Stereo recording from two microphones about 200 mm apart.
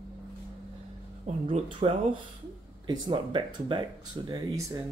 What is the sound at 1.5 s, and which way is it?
Speech, 25° right (ahead or behind).